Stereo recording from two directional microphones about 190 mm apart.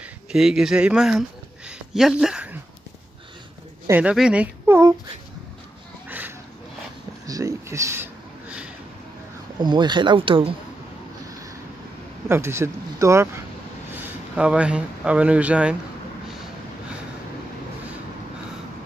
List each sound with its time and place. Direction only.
0.3 s speech: 5° right (ahead or behind)
3.8 s speech: 10° right (ahead or behind)
6.0 s a sound: 10° right (ahead or behind)
9.6 s speech: 25° right (ahead or behind)
12.3 s speech: 15° right (ahead or behind)